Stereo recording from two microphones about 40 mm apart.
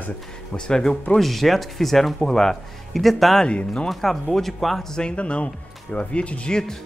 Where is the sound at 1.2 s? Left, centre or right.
Centre.